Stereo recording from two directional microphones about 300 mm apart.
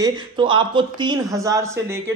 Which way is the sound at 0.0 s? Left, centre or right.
Centre.